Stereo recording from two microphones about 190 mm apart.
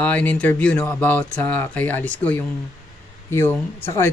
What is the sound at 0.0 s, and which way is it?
Speech, 10° left (ahead or behind).